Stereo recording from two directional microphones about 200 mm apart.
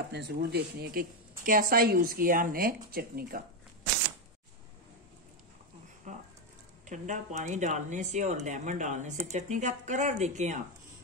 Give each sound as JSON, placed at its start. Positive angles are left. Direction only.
{"t": 0.1, "sound": "a woman's voice", "side_deg": -55}
{"t": 6.1, "sound": "a sound", "side_deg": -40}
{"t": 6.9, "sound": "speech", "side_deg": -40}